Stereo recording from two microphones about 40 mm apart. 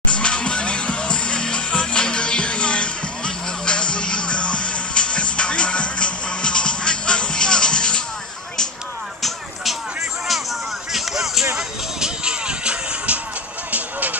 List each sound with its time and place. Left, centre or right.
0.1 s music: left
10.9 s music: centre; by 13.2 s right
13.7 s music: right